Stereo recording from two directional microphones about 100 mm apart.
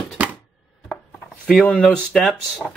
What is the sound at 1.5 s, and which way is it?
Speech, 5° left (ahead or behind).